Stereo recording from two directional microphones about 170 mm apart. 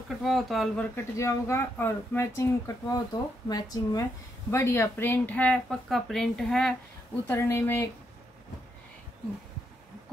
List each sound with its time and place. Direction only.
0.2 s speech: centre (ahead or behind)
0.9 s speech: 15° left (ahead or behind)
7.2 s speech: 15° left (ahead or behind)